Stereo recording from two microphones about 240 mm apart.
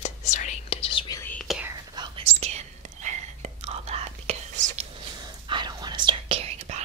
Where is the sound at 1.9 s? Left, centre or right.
Right.